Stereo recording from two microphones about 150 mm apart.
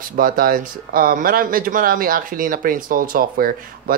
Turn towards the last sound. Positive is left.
turn(degrees=-75)  # may be behind; listen again after turning